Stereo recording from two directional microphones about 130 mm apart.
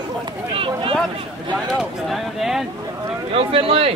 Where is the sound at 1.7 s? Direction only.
5° right (ahead or behind).